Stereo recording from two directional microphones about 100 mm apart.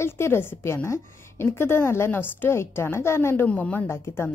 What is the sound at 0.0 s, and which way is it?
A woman's voice, 25° left (ahead or behind).